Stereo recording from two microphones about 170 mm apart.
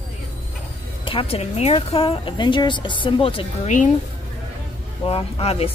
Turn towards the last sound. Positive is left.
turn(degrees=35)  # may be behind; listen again after turning